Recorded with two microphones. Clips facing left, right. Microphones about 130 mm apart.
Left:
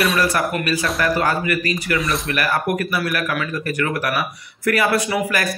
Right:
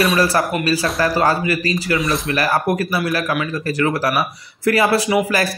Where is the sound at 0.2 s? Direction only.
30° right (ahead or behind).